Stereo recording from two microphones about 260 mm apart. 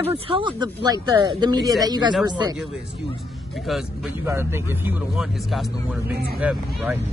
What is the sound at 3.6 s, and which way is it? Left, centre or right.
A man's voice, centre.